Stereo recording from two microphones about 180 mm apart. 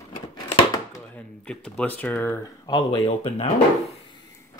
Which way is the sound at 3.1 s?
35° left (ahead or behind).